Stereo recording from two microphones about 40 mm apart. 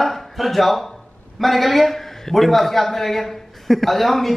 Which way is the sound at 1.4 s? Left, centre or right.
Centre.